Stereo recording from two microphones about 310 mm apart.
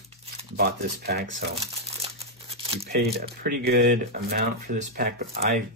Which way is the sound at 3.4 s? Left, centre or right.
Right.